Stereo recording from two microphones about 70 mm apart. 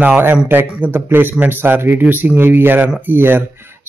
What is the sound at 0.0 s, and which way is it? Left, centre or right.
Speech, right.